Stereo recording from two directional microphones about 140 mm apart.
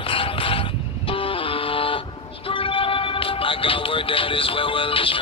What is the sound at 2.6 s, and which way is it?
Music, 40° left (ahead or behind).